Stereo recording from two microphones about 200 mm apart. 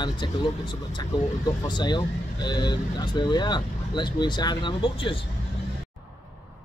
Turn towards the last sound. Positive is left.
turn(degrees=25)  # may be behind; listen again after turning